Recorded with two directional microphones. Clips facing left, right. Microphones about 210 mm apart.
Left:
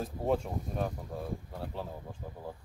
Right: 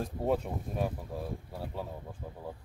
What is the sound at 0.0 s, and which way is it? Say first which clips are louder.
Speech: even; 5° right (ahead or behind).